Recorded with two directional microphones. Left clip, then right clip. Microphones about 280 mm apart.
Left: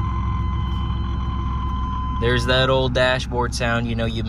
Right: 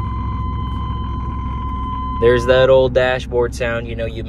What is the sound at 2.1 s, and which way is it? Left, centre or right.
Speech, centre.